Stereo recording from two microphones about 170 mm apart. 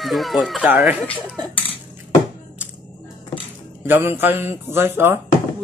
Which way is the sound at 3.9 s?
10° right (ahead or behind).